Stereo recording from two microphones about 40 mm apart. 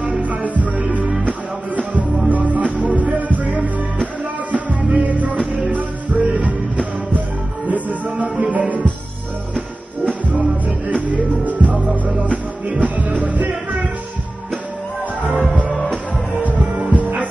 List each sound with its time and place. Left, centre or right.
0.2 s music: right
0.7 s music: right
2.2 s music: right
10.3 s music: right
16.3 s music: right